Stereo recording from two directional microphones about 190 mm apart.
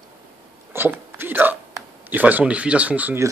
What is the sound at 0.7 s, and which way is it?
Speech, 10° right (ahead or behind).